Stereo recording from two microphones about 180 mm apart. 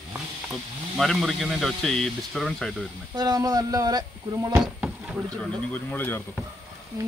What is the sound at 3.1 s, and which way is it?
Speech, 20° right (ahead or behind).